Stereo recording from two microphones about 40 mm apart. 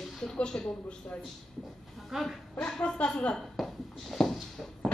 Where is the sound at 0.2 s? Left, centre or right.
Centre.